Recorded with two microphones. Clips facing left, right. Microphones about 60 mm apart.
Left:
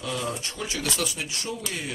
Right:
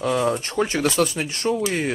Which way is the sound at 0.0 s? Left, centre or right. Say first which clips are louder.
Right 9 dB; right.